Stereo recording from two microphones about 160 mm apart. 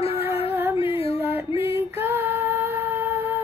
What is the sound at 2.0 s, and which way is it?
Music, 15° right (ahead or behind).